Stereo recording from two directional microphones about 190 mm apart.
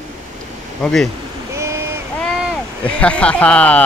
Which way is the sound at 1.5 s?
15° right (ahead or behind).